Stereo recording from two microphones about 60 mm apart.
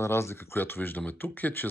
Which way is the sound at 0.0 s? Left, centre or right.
Left.